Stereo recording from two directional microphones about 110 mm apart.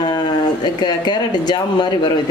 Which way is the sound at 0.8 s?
40° left (ahead or behind).